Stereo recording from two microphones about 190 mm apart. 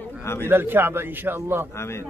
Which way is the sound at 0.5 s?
10° right (ahead or behind).